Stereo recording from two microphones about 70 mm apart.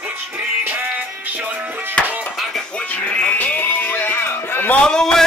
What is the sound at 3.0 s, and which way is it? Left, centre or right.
Music, left.